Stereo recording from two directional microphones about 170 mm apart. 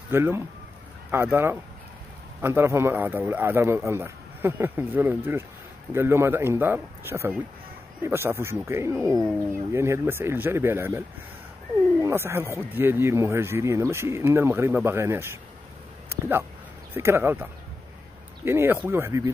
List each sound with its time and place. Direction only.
0.1 s speech: 15° right (ahead or behind)
16.9 s speech: 15° right (ahead or behind)